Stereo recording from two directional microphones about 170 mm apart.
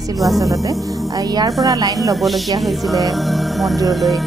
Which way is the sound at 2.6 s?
Centre (ahead or behind).